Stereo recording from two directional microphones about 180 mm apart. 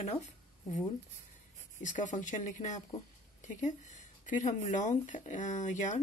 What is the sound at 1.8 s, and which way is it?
Speech, 45° left (ahead or behind).